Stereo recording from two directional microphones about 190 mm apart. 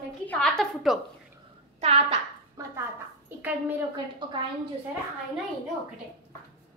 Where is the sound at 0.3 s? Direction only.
5° left (ahead or behind).